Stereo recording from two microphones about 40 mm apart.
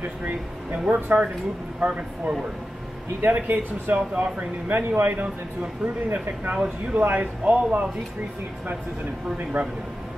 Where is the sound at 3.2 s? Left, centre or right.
Right.